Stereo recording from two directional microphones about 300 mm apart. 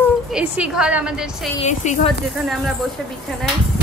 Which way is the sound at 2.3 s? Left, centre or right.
Centre.